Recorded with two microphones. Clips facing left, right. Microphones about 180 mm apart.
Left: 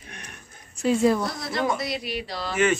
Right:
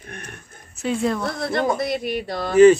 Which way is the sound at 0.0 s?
55° right (ahead or behind).